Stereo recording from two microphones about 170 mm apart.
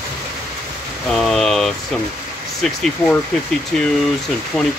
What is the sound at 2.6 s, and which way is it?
Speech, 5° left (ahead or behind).